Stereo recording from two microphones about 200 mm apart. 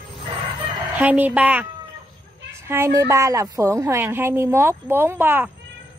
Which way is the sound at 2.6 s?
10° right (ahead or behind).